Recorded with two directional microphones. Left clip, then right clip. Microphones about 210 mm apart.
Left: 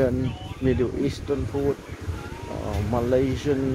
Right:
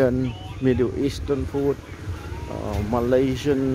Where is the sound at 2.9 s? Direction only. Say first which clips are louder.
Right 2 dB; 30° right (ahead or behind).